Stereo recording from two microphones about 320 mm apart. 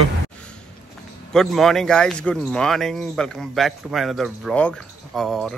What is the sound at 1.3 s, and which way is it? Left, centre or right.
Speech, centre.